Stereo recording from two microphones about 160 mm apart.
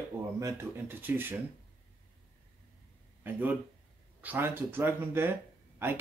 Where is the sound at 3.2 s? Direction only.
10° right (ahead or behind).